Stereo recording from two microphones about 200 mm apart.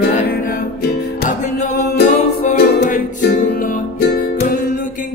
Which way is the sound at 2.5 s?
45° left (ahead or behind).